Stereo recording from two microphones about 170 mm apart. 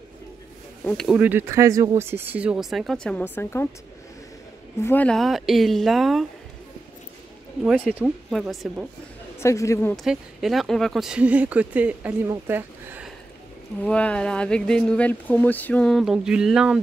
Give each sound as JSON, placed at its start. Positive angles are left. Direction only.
{"t": 0.8, "sound": "speech", "side_deg": 5}
{"t": 1.1, "sound": "speech", "side_deg": -10}
{"t": 4.8, "sound": "speech", "side_deg": 10}
{"t": 7.8, "sound": "speech", "side_deg": 0}
{"t": 9.4, "sound": "speech", "side_deg": 15}
{"t": 10.0, "sound": "speech", "side_deg": 0}
{"t": 13.8, "sound": "speech", "side_deg": 5}